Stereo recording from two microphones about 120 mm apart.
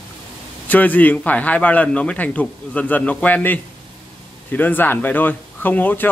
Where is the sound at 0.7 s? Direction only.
15° left (ahead or behind).